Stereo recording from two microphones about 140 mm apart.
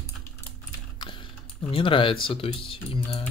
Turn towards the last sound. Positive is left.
turn(degrees=40)  # may be behind; listen again after turning